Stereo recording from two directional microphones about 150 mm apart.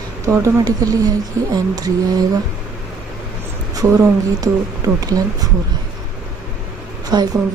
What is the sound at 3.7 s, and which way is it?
Speech, 20° right (ahead or behind).